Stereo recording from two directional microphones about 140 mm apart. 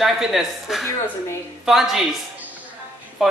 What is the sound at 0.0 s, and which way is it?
Speech, centre (ahead or behind).